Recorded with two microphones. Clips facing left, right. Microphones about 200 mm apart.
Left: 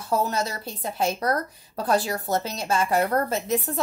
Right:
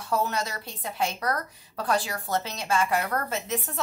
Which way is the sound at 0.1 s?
30° left (ahead or behind).